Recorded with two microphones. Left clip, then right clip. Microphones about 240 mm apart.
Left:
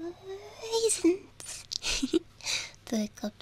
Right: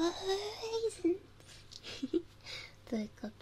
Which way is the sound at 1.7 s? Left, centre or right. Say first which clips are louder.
Left 8 dB; left.